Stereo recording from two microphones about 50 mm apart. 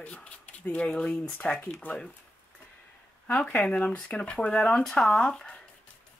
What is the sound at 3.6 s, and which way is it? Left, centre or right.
Speech, left.